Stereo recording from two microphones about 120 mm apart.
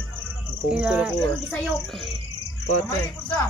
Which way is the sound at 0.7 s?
10° right (ahead or behind).